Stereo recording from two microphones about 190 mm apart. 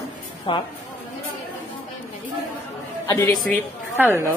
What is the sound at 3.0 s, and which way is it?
Speech, 15° left (ahead or behind).